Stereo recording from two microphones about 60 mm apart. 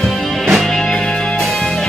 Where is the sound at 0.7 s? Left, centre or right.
Centre.